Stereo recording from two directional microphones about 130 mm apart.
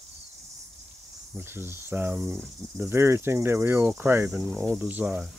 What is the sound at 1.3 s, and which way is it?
Cricket, 15° right (ahead or behind).